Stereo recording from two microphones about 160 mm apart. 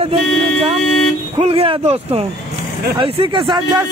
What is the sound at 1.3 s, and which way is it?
Speech, 40° right (ahead or behind).